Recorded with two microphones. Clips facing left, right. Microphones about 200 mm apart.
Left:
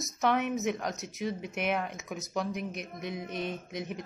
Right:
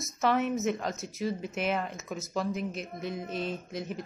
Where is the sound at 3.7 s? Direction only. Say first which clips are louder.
Right 1 dB; centre (ahead or behind).